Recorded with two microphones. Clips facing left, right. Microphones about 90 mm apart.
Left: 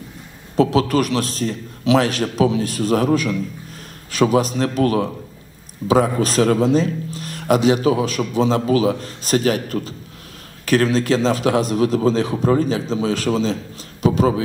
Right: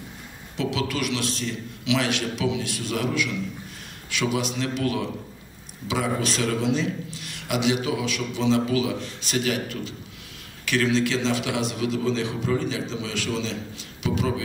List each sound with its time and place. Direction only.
0.6 s a man's voice: 40° left (ahead or behind)